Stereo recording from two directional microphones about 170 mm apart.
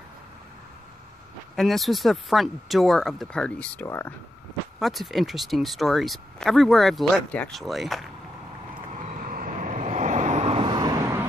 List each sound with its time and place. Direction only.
1.6 s speech: centre (ahead or behind)
4.7 s speech: centre (ahead or behind)
8.9 s vehicle: 50° right (ahead or behind)
10.7 s vehicle: 20° right (ahead or behind)